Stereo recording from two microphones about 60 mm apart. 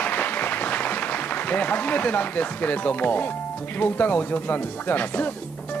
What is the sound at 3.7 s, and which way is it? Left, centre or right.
Speech, left.